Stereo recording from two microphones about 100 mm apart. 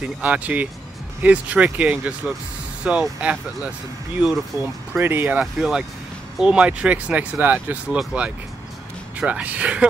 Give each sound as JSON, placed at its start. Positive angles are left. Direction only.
{"t": 0.0, "sound": "speech", "side_deg": -15}
{"t": 4.5, "sound": "speech", "side_deg": -30}